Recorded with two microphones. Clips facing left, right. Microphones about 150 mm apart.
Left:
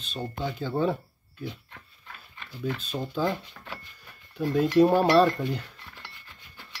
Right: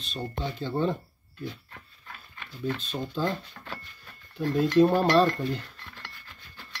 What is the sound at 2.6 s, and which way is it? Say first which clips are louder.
Speech: even; centre (ahead or behind).